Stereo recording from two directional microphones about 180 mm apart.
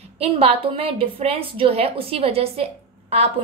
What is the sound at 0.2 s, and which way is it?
A woman's voice, 35° right (ahead or behind).